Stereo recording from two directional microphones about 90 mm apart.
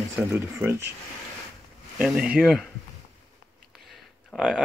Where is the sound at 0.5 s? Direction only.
25° right (ahead or behind).